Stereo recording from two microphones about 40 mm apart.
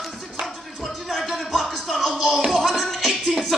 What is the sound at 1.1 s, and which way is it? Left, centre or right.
Music, centre.